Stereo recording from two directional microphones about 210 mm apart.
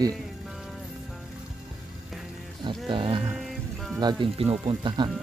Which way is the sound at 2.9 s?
25° right (ahead or behind).